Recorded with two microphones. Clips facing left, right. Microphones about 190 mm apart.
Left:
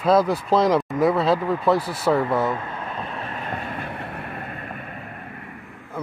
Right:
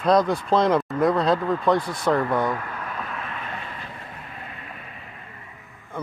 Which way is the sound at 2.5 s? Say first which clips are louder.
Left 1 dB; 25° left (ahead or behind).